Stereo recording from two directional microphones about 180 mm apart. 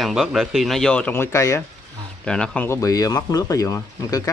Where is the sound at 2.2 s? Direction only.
5° left (ahead or behind).